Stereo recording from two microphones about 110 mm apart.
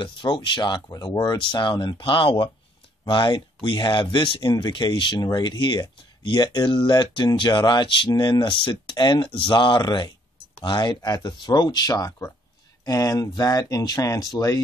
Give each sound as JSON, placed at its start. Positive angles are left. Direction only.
{"t": 0.0, "sound": "speech", "side_deg": 45}